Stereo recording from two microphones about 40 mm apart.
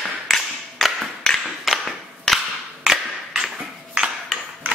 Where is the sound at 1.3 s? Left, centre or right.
Centre.